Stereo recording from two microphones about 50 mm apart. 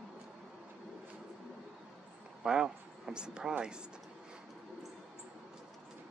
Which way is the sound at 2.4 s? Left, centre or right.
Centre.